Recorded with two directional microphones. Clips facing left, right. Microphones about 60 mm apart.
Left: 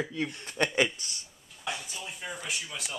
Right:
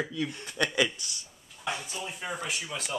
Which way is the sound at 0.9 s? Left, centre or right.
Left.